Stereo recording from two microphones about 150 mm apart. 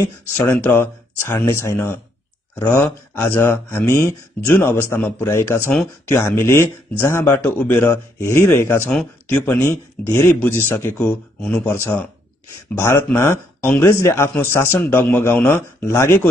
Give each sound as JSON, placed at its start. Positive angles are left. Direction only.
{"t": 0.4, "sound": "speech", "side_deg": 15}